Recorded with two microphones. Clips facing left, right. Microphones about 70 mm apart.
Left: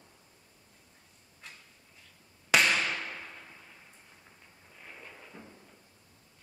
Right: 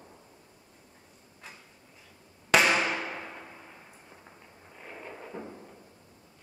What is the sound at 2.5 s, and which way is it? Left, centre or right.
Music, centre.